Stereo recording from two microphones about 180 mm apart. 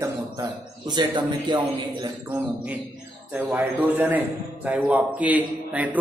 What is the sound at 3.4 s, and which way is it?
A man's voice, 10° right (ahead or behind).